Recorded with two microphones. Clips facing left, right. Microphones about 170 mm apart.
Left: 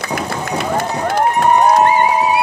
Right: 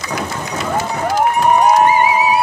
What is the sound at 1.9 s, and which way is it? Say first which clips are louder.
Music: even; 5° right (ahead or behind).